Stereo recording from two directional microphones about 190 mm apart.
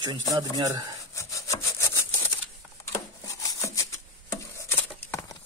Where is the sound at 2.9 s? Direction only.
15° left (ahead or behind).